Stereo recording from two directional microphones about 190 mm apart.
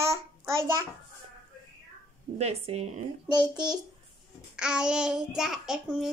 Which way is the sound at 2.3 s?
35° right (ahead or behind).